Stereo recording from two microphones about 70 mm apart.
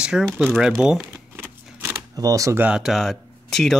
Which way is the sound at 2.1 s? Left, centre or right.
Right.